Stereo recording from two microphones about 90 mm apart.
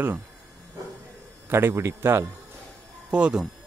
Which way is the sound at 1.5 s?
30° right (ahead or behind).